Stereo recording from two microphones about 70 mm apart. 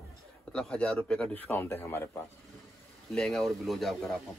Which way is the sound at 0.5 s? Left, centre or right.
Centre.